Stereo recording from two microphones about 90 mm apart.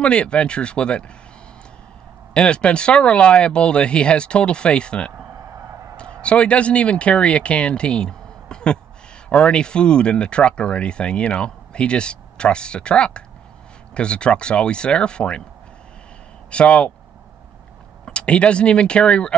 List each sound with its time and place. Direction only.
0.0 s speech: 10° left (ahead or behind)
2.3 s speech: 10° left (ahead or behind)
5.6 s a sound: 35° right (ahead or behind)
6.2 s speech: 15° left (ahead or behind)
16.4 s speech: 15° left (ahead or behind)
18.0 s speech: 10° left (ahead or behind)